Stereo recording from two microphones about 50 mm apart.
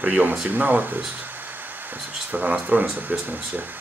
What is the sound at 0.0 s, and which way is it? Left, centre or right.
Speech, right.